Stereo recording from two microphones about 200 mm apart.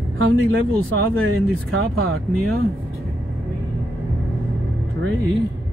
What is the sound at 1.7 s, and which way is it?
Speech, 90° right.